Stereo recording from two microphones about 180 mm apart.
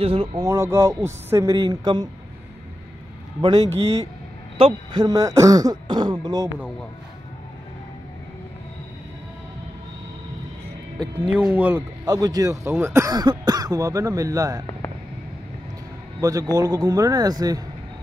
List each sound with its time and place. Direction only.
0.0 s speech: 30° right (ahead or behind)
0.4 s a man's voice: 15° right (ahead or behind)
3.3 s speech: 20° right (ahead or behind)
11.2 s a man's voice: 5° right (ahead or behind)
12.0 s speech: 20° right (ahead or behind)
16.2 s a man's voice: 20° right (ahead or behind)